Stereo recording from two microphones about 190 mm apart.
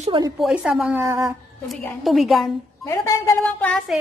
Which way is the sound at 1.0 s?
15° right (ahead or behind).